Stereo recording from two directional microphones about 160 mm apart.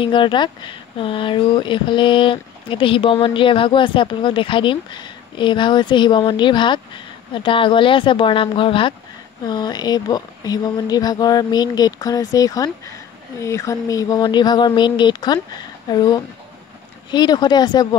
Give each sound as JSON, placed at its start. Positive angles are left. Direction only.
{"t": 0.0, "sound": "speech", "side_deg": 30}
{"t": 17.1, "sound": "speech", "side_deg": 25}